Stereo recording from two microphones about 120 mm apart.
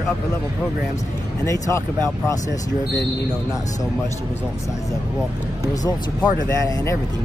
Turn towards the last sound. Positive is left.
turn(degrees=30)  # may be behind; listen again after turning